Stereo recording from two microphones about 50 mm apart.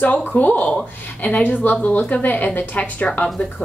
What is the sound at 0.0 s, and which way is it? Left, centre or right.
A woman's voice, left.